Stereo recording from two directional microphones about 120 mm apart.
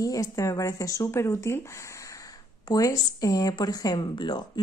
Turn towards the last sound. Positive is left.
turn(degrees=40)  # may be behind; listen again after turning